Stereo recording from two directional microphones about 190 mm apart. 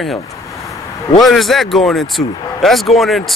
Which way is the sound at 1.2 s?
Centre (ahead or behind).